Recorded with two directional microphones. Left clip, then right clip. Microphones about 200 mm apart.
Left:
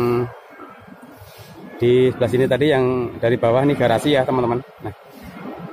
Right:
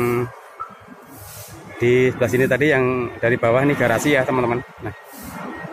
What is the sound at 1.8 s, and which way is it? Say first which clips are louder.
Speech: left 1 dB; 15° left (ahead or behind).